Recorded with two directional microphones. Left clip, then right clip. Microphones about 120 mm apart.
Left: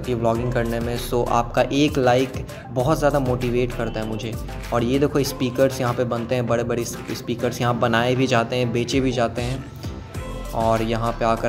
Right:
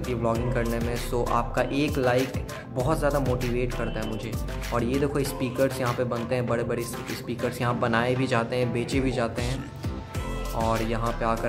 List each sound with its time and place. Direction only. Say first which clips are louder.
0.2 s speech: left 5 dB; 15° left (ahead or behind)
10.6 s speech: left 6 dB; 20° left (ahead or behind)